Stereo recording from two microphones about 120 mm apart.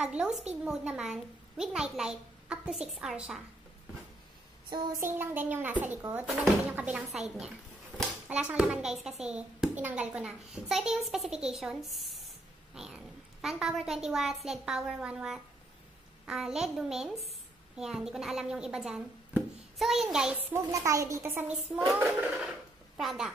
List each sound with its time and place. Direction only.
0.0 s a child's voice: 10° right (ahead or behind)
5.0 s a child's voice: 15° right (ahead or behind)
20.5 s a child's voice: 25° right (ahead or behind); by 23.3 s 5° right (ahead or behind)